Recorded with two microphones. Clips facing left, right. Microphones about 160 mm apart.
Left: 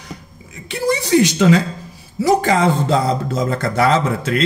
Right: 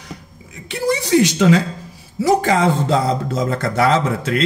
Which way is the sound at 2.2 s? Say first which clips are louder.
Even; 5° right (ahead or behind).